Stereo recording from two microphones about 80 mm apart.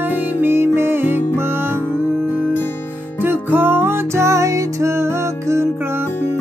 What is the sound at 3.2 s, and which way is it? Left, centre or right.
Music, right.